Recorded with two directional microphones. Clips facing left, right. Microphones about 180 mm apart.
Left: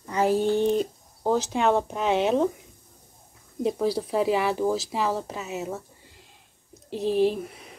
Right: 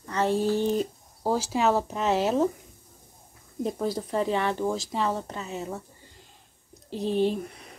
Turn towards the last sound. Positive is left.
turn(degrees=0)  # may be behind; listen again after turning